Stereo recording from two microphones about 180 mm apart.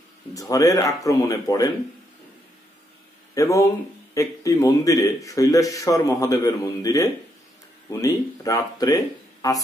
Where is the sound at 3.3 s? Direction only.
15° left (ahead or behind).